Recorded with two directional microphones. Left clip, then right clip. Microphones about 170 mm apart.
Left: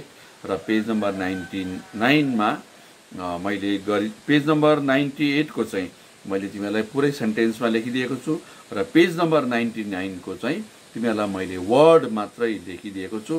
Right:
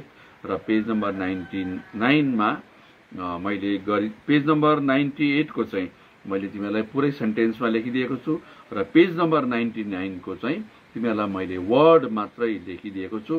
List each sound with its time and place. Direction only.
0.5 s a man's voice: 10° left (ahead or behind)